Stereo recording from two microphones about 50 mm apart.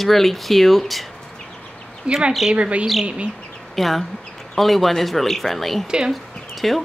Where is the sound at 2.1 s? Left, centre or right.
Right.